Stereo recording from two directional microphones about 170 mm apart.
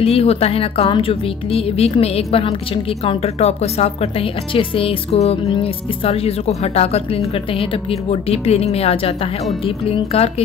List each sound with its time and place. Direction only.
0.0 s speech: 35° left (ahead or behind)